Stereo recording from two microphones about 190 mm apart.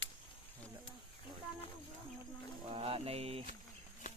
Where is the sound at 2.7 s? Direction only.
30° right (ahead or behind).